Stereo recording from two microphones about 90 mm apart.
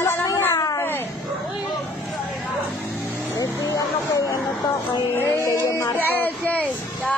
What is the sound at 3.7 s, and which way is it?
Speech, 40° left (ahead or behind).